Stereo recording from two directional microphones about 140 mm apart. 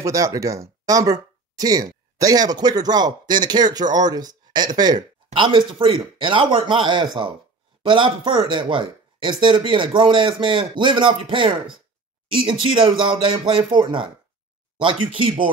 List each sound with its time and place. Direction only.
0.0 s speech: 25° right (ahead or behind)